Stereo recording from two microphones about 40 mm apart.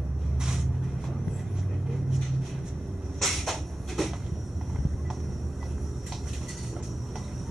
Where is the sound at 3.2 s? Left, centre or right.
Centre.